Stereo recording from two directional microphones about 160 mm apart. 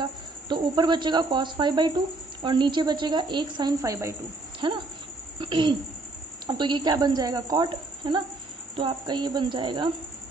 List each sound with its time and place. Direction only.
0.0 s speech: 30° right (ahead or behind)
4.6 s a woman's voice: 30° right (ahead or behind)